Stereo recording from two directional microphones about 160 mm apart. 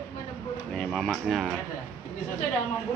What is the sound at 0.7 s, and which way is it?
Speech, 5° left (ahead or behind).